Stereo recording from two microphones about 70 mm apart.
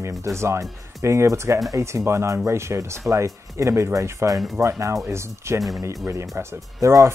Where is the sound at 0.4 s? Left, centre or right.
Right.